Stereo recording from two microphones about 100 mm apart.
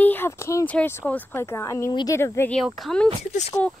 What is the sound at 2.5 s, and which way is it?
Speech, 5° left (ahead or behind).